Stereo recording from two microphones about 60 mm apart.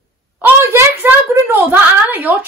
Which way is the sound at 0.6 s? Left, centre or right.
Right.